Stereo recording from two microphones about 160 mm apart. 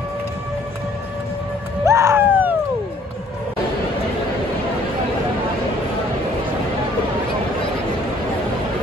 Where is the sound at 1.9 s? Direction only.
15° right (ahead or behind).